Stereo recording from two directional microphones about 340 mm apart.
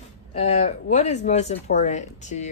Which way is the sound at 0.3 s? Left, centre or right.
Centre.